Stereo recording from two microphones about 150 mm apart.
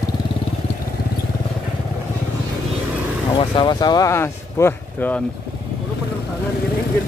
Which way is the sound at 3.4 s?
30° left (ahead or behind).